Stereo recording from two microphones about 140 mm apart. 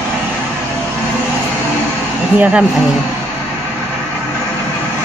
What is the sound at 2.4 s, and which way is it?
Speech, 10° right (ahead or behind).